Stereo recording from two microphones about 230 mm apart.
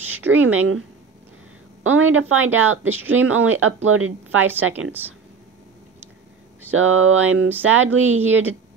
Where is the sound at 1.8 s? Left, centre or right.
Right.